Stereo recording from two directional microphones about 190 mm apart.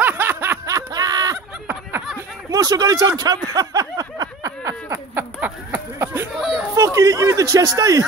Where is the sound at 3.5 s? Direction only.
20° right (ahead or behind).